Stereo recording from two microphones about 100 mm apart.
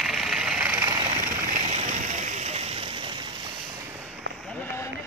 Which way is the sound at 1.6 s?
90° right.